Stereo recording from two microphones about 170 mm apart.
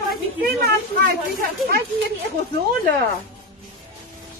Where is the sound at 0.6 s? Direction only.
65° right (ahead or behind).